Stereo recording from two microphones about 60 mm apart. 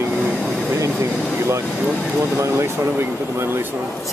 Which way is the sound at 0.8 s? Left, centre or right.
Right.